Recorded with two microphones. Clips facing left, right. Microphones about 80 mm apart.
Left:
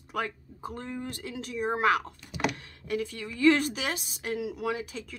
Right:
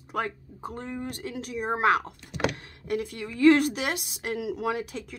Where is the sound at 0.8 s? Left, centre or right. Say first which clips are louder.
Right 3 dB; centre.